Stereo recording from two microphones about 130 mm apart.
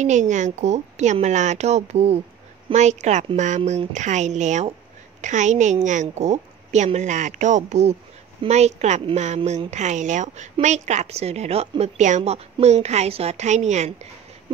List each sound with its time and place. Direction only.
0.0 s a woman's voice: 65° right (ahead or behind)
11.8 s a woman's voice: 65° right (ahead or behind)
12.2 s a woman's voice: 50° right (ahead or behind)